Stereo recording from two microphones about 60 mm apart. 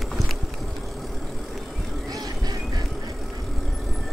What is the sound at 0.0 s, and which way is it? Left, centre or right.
Vehicle, centre.